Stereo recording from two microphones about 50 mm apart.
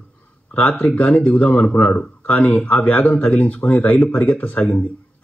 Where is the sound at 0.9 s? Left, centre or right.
Left.